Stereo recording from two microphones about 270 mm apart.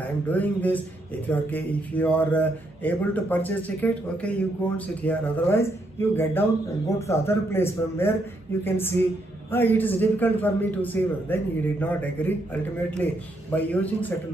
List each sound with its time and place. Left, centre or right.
0.3 s a man's voice: centre